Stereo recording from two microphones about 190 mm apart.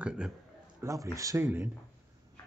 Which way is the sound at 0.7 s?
15° right (ahead or behind).